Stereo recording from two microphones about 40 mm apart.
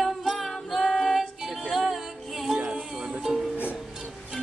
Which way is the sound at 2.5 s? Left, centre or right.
Right.